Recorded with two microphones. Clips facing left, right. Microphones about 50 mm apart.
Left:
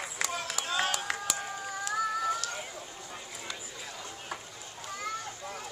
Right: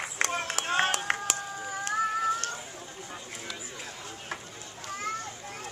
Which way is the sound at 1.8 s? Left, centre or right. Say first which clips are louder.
Right 3 dB; right.